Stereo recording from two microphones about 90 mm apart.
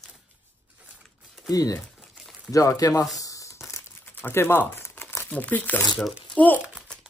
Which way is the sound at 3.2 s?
40° left (ahead or behind).